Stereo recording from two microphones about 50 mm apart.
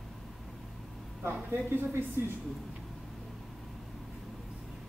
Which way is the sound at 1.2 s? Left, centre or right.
Right.